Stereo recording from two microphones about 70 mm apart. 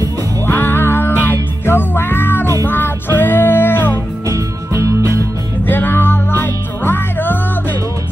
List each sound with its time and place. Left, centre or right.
0.5 s music: left
4.3 s music: right
5.7 s music: left